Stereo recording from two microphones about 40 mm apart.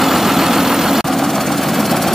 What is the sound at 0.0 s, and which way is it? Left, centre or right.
Vehicle, centre.